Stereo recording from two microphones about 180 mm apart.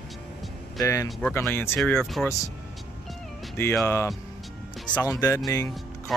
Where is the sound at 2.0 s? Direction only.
Centre (ahead or behind).